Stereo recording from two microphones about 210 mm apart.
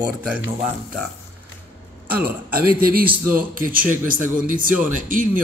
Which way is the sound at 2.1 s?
45° right (ahead or behind).